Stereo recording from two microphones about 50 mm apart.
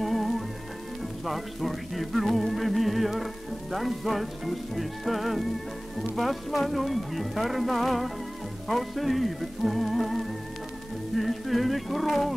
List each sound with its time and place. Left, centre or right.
0.0 s music: centre
1.2 s speech: centre